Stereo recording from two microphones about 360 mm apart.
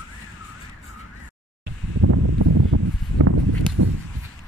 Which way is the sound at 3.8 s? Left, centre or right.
Right.